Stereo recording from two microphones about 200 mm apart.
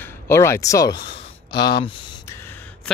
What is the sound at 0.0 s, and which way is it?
Speech, 10° left (ahead or behind).